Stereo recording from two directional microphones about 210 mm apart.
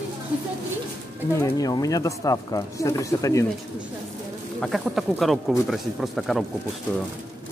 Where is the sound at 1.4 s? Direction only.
15° left (ahead or behind).